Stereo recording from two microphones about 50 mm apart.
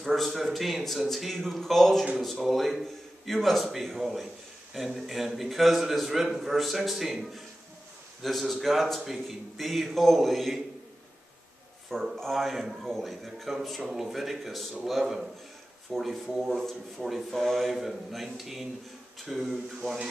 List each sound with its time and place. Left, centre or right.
0.0 s a man's voice: centre
12.2 s a man's voice: centre
17.7 s a man's voice: centre